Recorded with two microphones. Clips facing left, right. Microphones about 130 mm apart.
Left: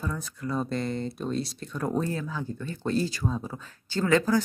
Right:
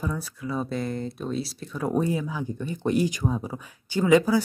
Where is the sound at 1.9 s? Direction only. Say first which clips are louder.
Right 5 dB; 15° right (ahead or behind).